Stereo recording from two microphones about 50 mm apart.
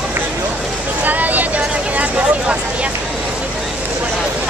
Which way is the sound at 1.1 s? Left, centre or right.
Right.